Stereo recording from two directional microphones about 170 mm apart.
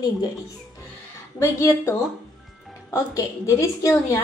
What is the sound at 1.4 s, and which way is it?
A woman's voice, 15° left (ahead or behind).